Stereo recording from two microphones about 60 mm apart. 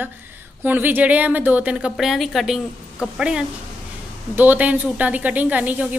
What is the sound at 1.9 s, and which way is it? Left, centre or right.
Speech, centre.